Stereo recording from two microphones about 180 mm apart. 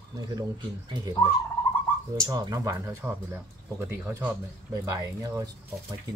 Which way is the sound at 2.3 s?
20° right (ahead or behind).